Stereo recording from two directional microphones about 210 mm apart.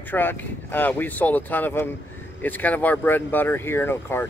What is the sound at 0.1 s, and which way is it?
Speech, 10° left (ahead or behind).